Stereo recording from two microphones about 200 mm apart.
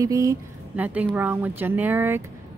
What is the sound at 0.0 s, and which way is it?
Speech, 15° right (ahead or behind).